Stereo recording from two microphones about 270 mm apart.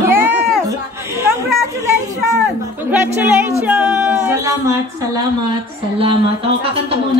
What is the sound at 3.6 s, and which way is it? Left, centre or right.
Singing, centre.